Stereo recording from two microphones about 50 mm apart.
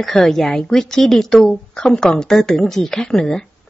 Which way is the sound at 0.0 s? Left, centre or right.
Centre.